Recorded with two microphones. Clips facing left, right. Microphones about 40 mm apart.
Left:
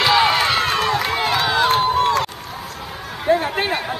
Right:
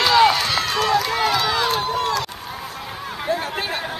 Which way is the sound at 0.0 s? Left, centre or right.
Centre.